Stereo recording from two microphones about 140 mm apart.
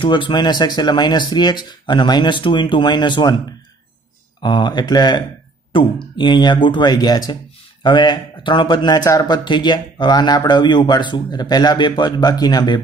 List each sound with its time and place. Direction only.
0.0 s speech: 35° left (ahead or behind)
4.4 s speech: 35° left (ahead or behind)